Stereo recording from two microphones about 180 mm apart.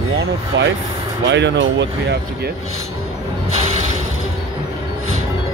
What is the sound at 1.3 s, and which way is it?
Speech, 80° right.